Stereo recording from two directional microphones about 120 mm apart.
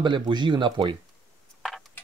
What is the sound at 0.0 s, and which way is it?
Speech, 40° right (ahead or behind).